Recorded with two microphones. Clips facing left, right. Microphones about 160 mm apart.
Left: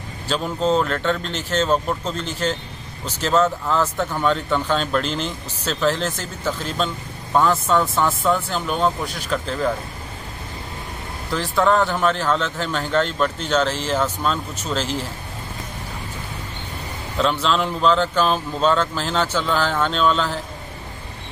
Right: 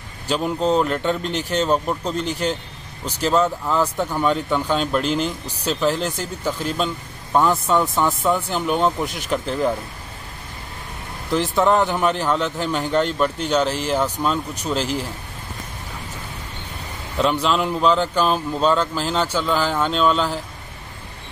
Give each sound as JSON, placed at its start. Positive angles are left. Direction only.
{"t": 0.3, "sound": "speech", "side_deg": -10}
{"t": 11.3, "sound": "speech", "side_deg": -20}
{"t": 17.2, "sound": "speech", "side_deg": -10}